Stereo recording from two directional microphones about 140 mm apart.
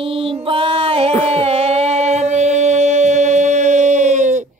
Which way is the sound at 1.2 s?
45° right (ahead or behind).